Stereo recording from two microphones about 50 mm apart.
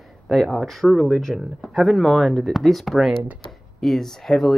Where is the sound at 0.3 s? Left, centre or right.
Centre.